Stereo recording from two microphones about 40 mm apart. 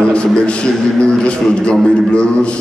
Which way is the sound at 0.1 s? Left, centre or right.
Left.